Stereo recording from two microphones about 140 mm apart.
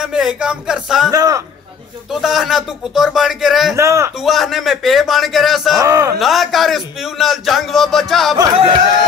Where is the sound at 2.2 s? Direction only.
5° right (ahead or behind).